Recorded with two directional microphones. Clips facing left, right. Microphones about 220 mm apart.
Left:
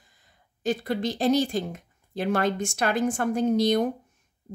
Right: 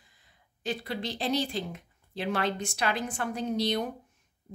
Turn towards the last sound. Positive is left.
turn(degrees=45)  # may be behind; listen again after turning